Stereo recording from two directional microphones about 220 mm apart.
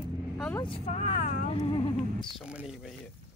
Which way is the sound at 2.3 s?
5° right (ahead or behind).